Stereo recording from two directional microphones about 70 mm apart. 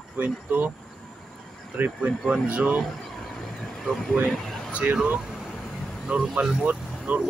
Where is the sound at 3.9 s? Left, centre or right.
Centre.